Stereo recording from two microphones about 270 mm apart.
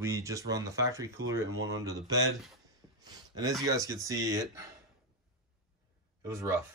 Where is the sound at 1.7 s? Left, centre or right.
Centre.